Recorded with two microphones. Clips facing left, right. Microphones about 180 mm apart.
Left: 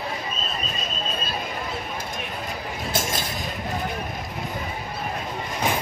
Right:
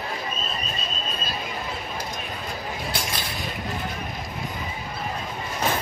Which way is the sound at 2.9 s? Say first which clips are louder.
Left 3 dB; 45° left (ahead or behind).